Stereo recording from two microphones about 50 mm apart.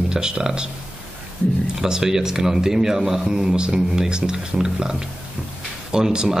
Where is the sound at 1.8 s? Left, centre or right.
Centre.